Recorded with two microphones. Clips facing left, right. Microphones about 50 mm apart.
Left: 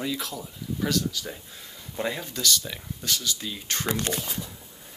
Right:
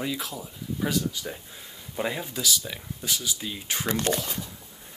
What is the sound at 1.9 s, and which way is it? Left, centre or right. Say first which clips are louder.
Speech: even; centre.